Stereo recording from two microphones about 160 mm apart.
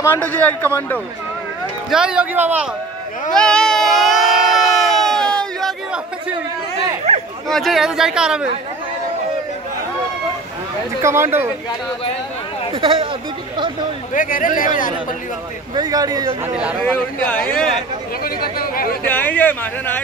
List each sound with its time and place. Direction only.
0.0 s a man's voice: 10° left (ahead or behind)
1.9 s speech: 5° right (ahead or behind)
3.3 s crowd: 5° left (ahead or behind)
7.4 s speech: centre (ahead or behind)
11.0 s speech: 15° right (ahead or behind)
12.7 s speech: 35° right (ahead or behind)
14.1 s a man's voice: 55° left (ahead or behind)
15.7 s speech: 25° right (ahead or behind)
16.8 s a man's voice: 10° left (ahead or behind)
18.2 s speech: 70° left (ahead or behind)
19.0 s a man's voice: 10° left (ahead or behind)